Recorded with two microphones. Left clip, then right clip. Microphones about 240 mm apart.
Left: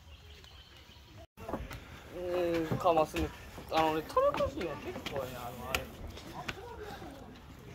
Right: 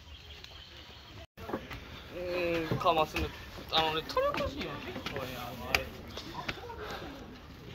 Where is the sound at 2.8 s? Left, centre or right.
Left.